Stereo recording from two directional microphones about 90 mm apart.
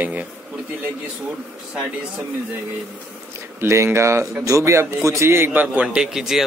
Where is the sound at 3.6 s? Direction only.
30° right (ahead or behind).